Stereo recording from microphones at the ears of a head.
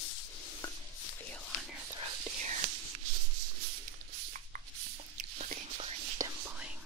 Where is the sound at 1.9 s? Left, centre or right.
Right.